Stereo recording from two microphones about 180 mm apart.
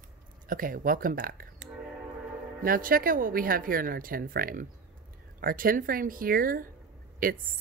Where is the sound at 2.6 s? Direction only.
55° right (ahead or behind).